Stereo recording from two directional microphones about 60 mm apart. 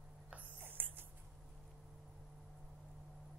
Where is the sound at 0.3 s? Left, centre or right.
Right.